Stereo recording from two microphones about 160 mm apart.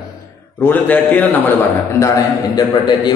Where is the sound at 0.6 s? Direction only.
10° left (ahead or behind).